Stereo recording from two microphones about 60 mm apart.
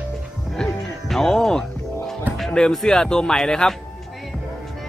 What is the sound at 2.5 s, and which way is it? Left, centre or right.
Speech, centre.